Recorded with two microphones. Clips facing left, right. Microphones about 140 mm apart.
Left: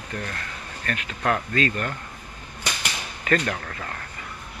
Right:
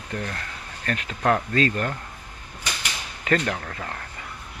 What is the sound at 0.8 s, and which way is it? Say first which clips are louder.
A man's voice: right 2 dB; 25° right (ahead or behind).